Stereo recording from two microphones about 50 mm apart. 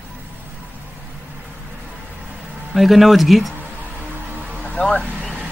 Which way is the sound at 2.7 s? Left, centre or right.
Centre.